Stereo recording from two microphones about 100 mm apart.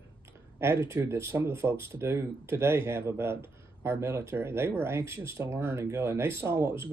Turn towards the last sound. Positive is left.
turn(degrees=-25)  # may be behind; listen again after turning